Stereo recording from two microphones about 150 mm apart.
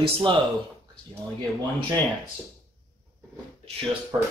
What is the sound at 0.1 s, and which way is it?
Speech, 35° right (ahead or behind).